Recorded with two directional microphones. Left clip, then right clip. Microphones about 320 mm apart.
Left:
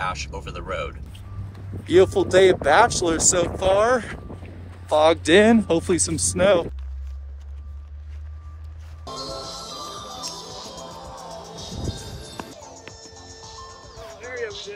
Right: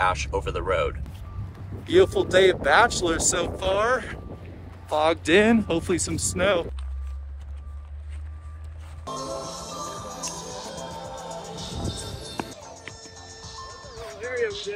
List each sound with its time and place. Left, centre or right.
0.0 s speech: centre
9.1 s music: right
9.9 s music: centre
12.5 s music: left